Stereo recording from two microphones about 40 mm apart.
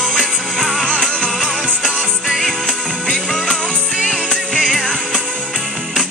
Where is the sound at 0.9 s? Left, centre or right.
Left.